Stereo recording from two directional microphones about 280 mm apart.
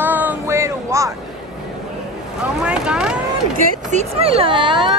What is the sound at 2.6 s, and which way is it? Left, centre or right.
Speech, centre.